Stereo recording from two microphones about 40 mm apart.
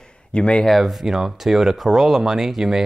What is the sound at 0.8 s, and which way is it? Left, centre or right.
Speech, centre.